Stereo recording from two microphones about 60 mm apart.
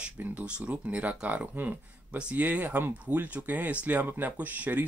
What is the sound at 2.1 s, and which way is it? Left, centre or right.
Speech, centre.